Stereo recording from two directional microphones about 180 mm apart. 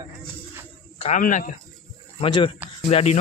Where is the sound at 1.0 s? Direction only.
45° left (ahead or behind).